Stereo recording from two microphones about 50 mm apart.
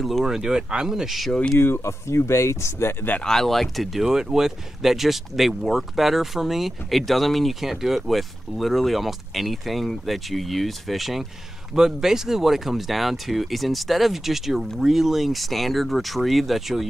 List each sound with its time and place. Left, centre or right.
0.0 s speech: centre
1.6 s speech: left
3.3 s speech: centre
4.0 s speech: centre